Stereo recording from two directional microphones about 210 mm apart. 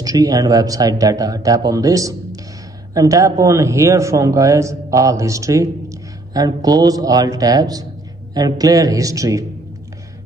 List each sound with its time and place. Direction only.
0.0 s a man's voice: 20° right (ahead or behind)